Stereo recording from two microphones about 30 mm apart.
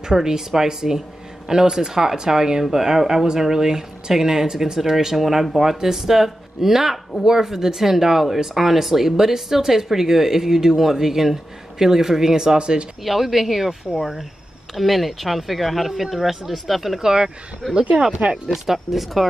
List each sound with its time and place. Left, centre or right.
0.1 s speech: centre
4.7 s speech: centre
12.5 s speech: right
13.0 s speech: centre
14.8 s speech: centre
17.0 s speech: right
18.5 s speech: centre